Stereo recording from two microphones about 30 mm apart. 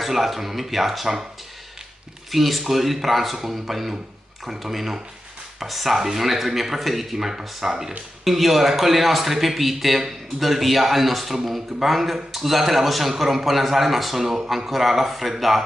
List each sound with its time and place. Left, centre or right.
0.0 s speech: centre
2.3 s a man's voice: centre